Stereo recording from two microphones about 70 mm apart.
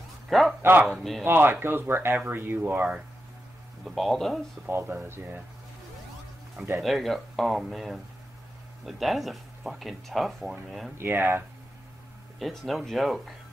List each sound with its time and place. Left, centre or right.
0.3 s a man's voice: centre
0.6 s speech: right
3.8 s speech: centre
4.6 s speech: right
6.8 s speech: centre
11.0 s speech: right
12.4 s speech: centre